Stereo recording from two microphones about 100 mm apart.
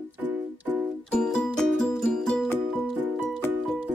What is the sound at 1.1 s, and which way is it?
Music, 10° left (ahead or behind).